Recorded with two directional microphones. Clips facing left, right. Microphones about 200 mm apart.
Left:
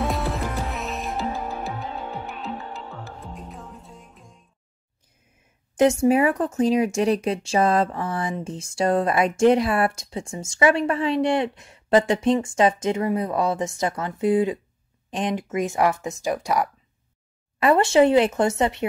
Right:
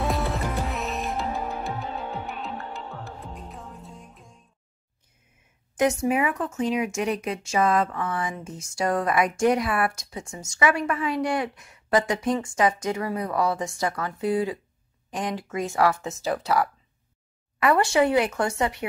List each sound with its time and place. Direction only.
0.0 s music: centre (ahead or behind)
5.8 s speech: 30° left (ahead or behind)